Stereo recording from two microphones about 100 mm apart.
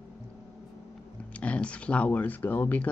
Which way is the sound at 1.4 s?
10° left (ahead or behind).